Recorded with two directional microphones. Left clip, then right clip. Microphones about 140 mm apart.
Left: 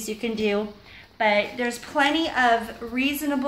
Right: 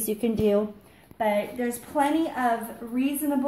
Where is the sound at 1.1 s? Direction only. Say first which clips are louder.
Left 4 dB; 30° right (ahead or behind).